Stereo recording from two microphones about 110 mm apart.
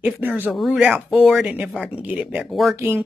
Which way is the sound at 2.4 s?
Centre (ahead or behind).